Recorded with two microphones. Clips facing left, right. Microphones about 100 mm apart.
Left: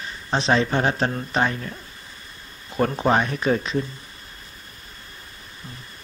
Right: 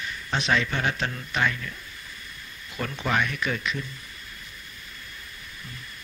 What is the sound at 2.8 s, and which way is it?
Speech, 35° left (ahead or behind).